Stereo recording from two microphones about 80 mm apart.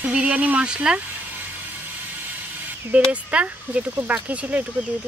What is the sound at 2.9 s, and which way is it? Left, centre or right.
Speech, centre.